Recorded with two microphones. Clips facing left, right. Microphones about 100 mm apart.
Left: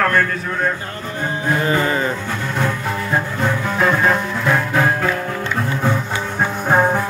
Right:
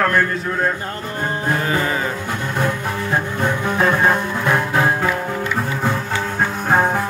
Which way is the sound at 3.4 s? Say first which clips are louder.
Even; 15° right (ahead or behind).